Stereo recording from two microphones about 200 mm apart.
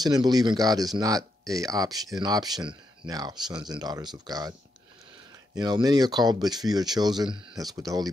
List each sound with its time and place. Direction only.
0.0 s speech: 20° right (ahead or behind)